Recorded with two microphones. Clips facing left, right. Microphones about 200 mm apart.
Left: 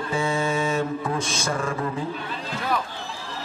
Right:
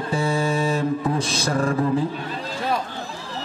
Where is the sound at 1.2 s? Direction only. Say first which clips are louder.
Right 3 dB; 35° right (ahead or behind).